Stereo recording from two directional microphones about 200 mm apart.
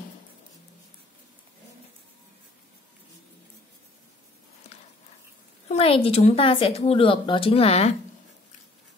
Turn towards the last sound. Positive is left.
turn(degrees=30)  # may be behind; listen again after turning